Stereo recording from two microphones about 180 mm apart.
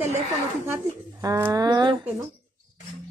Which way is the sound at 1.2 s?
20° right (ahead or behind).